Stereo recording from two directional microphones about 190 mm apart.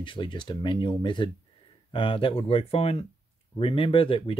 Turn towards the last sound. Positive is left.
turn(degrees=30)  # may be behind; listen again after turning